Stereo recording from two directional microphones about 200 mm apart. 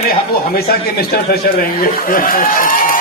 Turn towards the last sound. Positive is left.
turn(degrees=45)  # may be behind; listen again after turning